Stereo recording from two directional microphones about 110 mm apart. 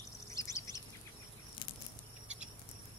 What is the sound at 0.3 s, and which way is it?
Bird, 30° left (ahead or behind).